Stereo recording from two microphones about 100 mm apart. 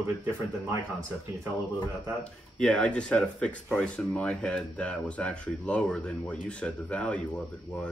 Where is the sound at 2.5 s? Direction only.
10° left (ahead or behind).